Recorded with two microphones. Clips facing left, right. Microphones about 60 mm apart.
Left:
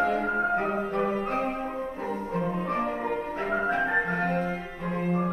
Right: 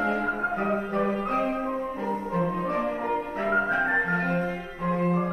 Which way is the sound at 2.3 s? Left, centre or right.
Right.